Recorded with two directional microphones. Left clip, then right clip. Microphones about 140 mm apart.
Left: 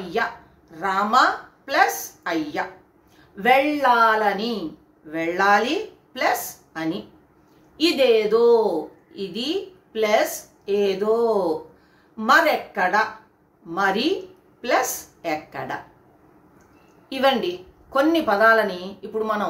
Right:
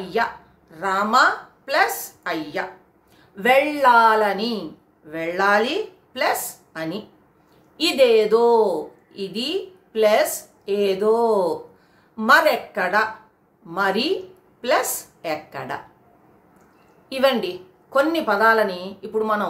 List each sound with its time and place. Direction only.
0.1 s a woman's voice: 15° right (ahead or behind)
17.1 s speech: 15° right (ahead or behind)